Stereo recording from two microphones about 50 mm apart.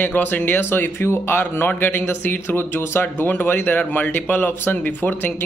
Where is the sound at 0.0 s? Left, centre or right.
Left.